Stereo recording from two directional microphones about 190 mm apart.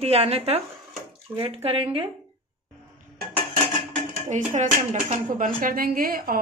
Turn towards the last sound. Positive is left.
turn(degrees=-50)  # may be behind; listen again after turning